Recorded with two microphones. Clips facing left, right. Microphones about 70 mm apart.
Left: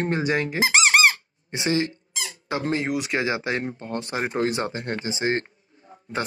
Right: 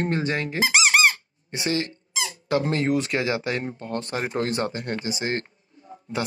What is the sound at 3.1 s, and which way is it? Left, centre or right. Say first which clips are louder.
Speech: even; left.